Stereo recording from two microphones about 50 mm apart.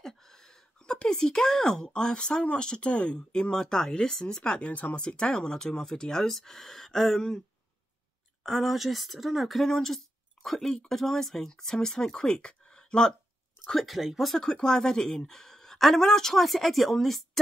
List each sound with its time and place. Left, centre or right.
0.0 s a sound: centre
2.4 s speech: centre
5.0 s speech: centre
8.5 s speech: centre
13.7 s speech: centre
14.3 s speech: centre